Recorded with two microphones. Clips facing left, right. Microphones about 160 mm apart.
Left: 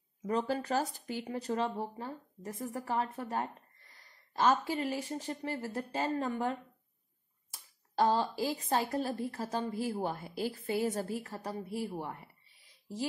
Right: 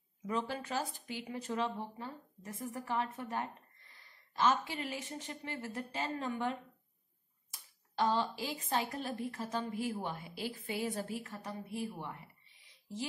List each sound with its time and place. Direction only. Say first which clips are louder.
0.3 s a woman's voice: left 5 dB; 40° left (ahead or behind)
7.9 s a woman's voice: left 3 dB; 40° left (ahead or behind)